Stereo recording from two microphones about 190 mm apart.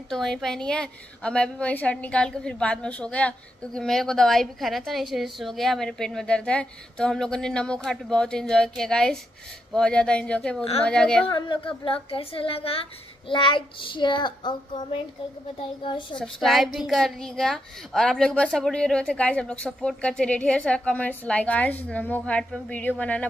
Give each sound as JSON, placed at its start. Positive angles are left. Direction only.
{"t": 0.1, "sound": "a woman's voice", "side_deg": 0}
{"t": 10.6, "sound": "a woman's voice", "side_deg": 30}
{"t": 10.9, "sound": "a woman's voice", "side_deg": 5}
{"t": 11.3, "sound": "a child's voice", "side_deg": 25}
{"t": 16.2, "sound": "a woman's voice", "side_deg": 0}